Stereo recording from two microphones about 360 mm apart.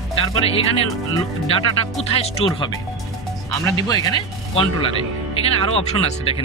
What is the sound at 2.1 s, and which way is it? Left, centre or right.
Speech, centre.